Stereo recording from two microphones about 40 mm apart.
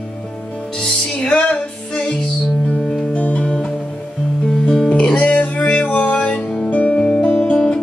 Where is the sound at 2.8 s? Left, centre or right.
Centre.